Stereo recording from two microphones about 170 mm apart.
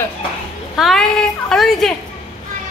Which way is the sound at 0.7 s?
Centre (ahead or behind).